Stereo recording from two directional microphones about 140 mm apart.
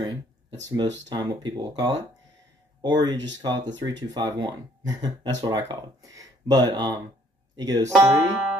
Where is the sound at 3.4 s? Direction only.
30° right (ahead or behind).